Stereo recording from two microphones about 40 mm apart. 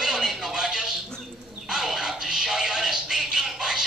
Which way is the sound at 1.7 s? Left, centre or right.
Centre.